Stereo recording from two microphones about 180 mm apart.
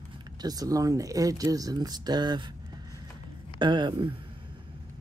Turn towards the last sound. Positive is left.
turn(degrees=-25)  # may be behind; listen again after turning